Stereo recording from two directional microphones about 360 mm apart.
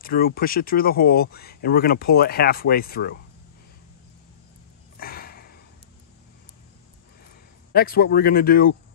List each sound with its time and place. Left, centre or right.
0.0 s speech: left
4.9 s a sound: left
7.7 s speech: left